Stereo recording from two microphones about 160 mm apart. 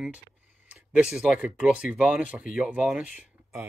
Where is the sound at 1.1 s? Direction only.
5° right (ahead or behind).